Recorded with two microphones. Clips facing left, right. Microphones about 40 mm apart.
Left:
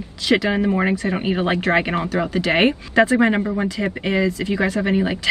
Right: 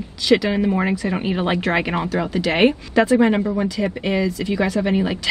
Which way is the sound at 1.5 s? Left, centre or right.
Centre.